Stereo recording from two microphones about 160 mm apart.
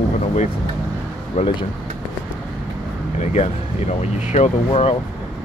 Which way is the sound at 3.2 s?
45° left (ahead or behind).